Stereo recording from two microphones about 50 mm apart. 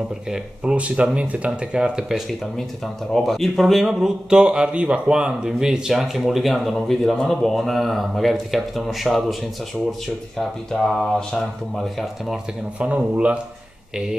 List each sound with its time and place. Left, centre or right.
0.7 s speech: right
3.1 s speech: centre
4.0 s speech: centre
12.7 s speech: right